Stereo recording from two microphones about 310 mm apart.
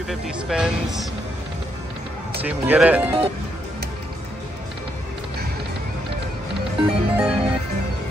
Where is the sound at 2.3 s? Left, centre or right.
Centre.